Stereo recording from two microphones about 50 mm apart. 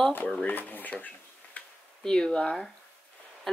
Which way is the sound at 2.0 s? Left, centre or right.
Centre.